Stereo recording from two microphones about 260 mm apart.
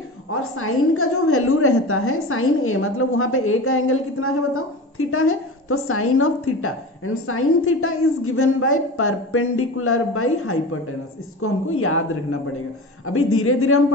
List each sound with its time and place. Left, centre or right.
0.3 s a woman's voice: left